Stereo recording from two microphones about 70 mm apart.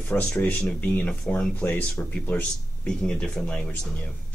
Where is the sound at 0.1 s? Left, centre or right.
Left.